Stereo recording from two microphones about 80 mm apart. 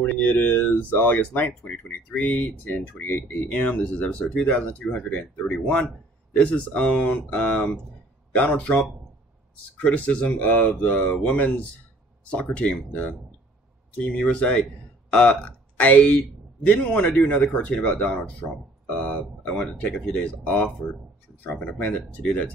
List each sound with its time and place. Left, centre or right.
0.1 s speech: left